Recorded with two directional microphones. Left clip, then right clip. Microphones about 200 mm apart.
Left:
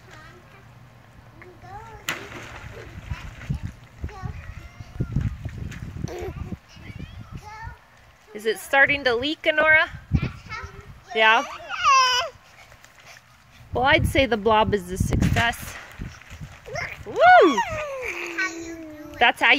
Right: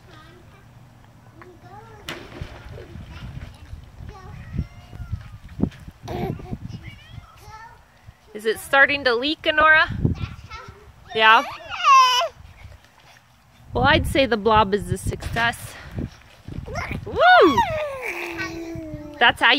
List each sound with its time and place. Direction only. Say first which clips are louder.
2.1 s a sound: left 4 dB; 10° right (ahead or behind)
6.0 s a sound: right 4 dB; 35° right (ahead or behind)
8.3 s speech: right 2 dB; centre (ahead or behind)
10.5 s children playing: left 3 dB; 40° left (ahead or behind)
11.1 s speech: right 3 dB; 10° right (ahead or behind)
11.4 s baby cry: right 2 dB; 35° right (ahead or behind)
13.7 s speech: right 1 dB; centre (ahead or behind)
15.1 s a sound: even; 5° right (ahead or behind)
16.7 s clip-clop: right 1 dB; 25° right (ahead or behind)
17.1 s dog: even; 5° right (ahead or behind)
17.6 s babbling: right 4 dB; 35° right (ahead or behind)
19.1 s speech: right 2 dB; 5° right (ahead or behind)